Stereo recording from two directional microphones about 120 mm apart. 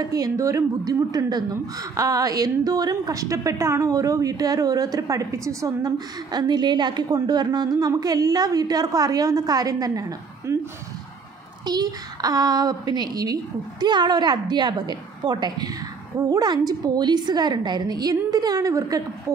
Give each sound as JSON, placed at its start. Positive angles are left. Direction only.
{"t": 0.1, "sound": "a woman's voice", "side_deg": -30}
{"t": 11.6, "sound": "a woman's voice", "side_deg": -35}